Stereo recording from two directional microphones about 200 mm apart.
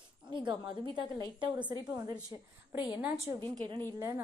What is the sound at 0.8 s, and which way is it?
Speech, 20° right (ahead or behind).